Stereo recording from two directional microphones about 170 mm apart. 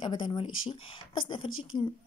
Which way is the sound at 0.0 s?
30° left (ahead or behind).